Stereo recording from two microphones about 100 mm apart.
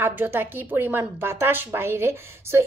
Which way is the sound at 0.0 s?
20° right (ahead or behind).